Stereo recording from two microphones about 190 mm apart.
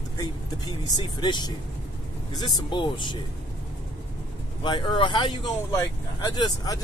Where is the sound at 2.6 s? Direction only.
25° left (ahead or behind).